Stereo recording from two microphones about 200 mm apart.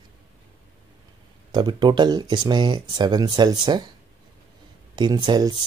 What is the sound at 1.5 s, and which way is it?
Speech, 20° right (ahead or behind).